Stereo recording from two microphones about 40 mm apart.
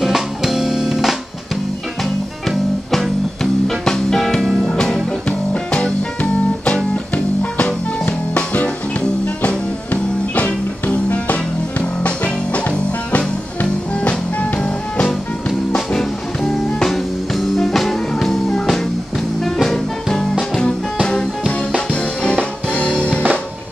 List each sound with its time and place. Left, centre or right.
0.0 s music: centre
2.5 s music: centre
4.4 s music: centre
4.6 s music: centre
10.3 s music: left
12.5 s music: left
15.7 s music: centre